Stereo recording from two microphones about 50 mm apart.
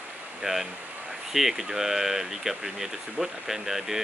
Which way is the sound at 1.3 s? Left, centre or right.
Centre.